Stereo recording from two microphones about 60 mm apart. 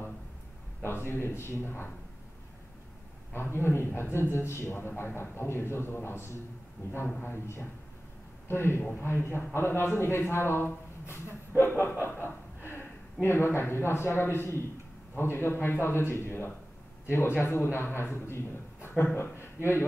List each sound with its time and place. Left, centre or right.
0.8 s a man's voice: left
3.3 s a man's voice: left
11.8 s a man's voice: left
12.2 s a man's voice: left